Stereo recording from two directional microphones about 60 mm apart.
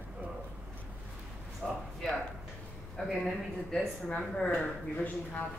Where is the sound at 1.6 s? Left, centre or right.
Centre.